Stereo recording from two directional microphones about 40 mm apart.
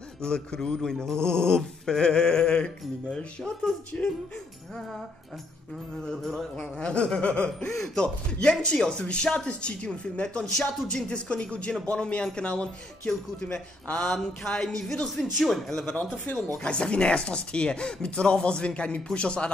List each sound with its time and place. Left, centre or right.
0.2 s speech: centre
1.2 s dog: right
1.5 s speech: centre
6.5 s speech: left
15.1 s speech: centre
15.8 s speech: left
16.5 s speech: left